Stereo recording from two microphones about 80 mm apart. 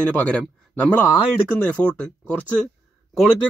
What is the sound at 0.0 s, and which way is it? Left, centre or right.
Speech, centre.